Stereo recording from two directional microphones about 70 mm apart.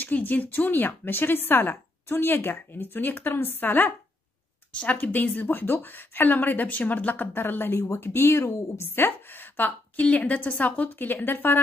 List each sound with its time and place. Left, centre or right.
0.0 s speech: left
4.9 s speech: left